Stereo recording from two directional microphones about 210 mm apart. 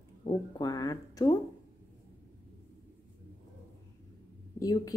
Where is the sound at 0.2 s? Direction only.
20° left (ahead or behind).